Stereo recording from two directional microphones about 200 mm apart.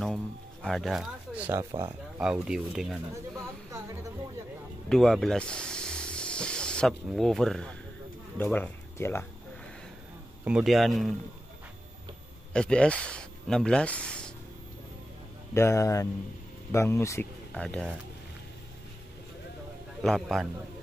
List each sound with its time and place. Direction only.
0.0 s speech: centre (ahead or behind)
4.8 s speech: centre (ahead or behind)
10.4 s a man's voice: 5° right (ahead or behind)
12.5 s speech: 5° left (ahead or behind)
15.5 s speech: 15° left (ahead or behind)
20.0 s a man's voice: centre (ahead or behind)